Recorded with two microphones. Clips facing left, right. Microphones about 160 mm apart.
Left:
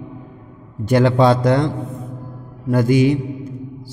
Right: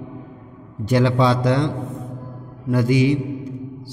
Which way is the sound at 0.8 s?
50° left (ahead or behind).